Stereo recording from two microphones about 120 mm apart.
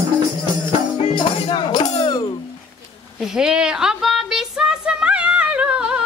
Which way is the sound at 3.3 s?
5° right (ahead or behind).